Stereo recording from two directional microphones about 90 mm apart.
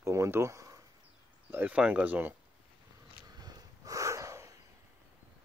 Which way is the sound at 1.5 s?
20° right (ahead or behind).